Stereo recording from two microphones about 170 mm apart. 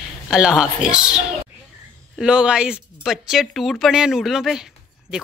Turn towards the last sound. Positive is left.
turn(degrees=0)  # may be behind; listen again after turning